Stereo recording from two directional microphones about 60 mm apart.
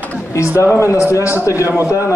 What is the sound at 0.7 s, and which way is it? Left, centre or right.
Speech, left.